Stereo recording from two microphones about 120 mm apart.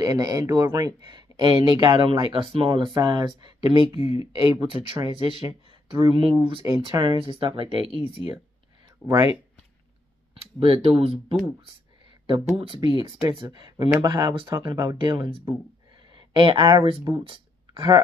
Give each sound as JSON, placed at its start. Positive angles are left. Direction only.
{"t": 0.0, "sound": "speech", "side_deg": -30}
{"t": 6.6, "sound": "speech", "side_deg": -30}
{"t": 7.1, "sound": "speech", "side_deg": -45}
{"t": 9.0, "sound": "speech", "side_deg": -25}
{"t": 10.3, "sound": "speech", "side_deg": -50}